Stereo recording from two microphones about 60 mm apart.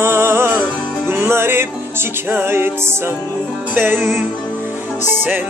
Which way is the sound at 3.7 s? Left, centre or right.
Right.